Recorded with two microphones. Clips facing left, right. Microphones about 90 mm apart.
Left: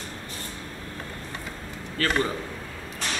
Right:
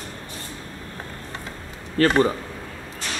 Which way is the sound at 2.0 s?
40° right (ahead or behind).